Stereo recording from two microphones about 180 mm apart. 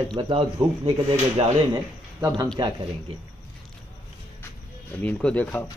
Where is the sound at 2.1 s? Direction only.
20° right (ahead or behind).